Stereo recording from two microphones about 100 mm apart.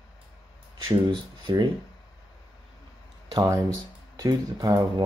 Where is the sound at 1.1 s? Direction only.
50° right (ahead or behind).